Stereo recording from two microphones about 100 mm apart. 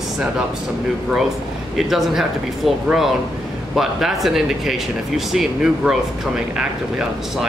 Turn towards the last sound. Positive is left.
turn(degrees=-10)  # may be behind; listen again after turning